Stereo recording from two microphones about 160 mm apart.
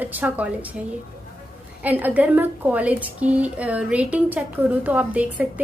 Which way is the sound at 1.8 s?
10° right (ahead or behind).